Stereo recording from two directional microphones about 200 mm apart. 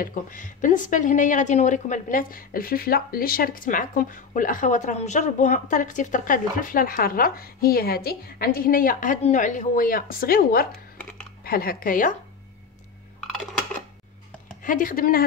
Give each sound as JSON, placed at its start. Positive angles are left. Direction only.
{"t": 0.0, "sound": "a woman's voice", "side_deg": 40}
{"t": 11.0, "sound": "computer keyboard", "side_deg": 5}
{"t": 11.4, "sound": "speech", "side_deg": 50}
{"t": 13.2, "sound": "a sound", "side_deg": 0}
{"t": 14.6, "sound": "speech", "side_deg": 40}